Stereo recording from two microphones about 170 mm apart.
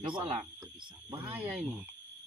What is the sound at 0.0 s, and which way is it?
Speech, 30° right (ahead or behind).